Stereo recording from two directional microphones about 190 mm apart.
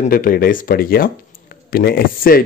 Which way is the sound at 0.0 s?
50° left (ahead or behind).